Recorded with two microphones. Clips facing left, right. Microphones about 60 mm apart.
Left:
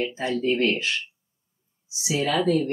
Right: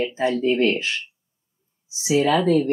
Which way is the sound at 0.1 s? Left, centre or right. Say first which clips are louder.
Right 4 dB; right.